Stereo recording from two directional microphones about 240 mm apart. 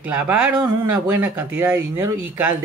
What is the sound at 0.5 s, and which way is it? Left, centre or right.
Speech, centre.